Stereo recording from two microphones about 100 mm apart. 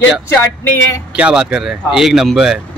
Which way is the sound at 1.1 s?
10° right (ahead or behind).